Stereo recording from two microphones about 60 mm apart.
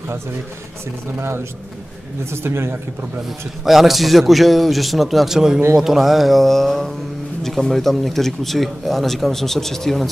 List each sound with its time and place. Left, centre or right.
1.1 s speech: right
3.6 s speech: centre